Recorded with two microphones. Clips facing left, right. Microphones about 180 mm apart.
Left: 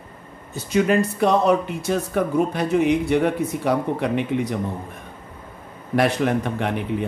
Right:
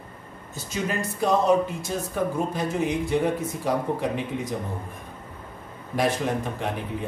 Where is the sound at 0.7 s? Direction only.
65° left (ahead or behind).